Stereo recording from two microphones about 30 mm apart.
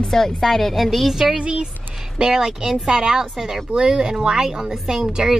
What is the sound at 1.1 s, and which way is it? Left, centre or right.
Speech, centre.